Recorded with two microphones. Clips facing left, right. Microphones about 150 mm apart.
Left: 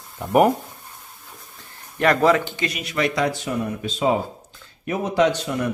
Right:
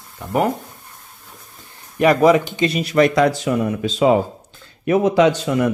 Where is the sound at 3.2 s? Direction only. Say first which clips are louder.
Right 6 dB; 90° right.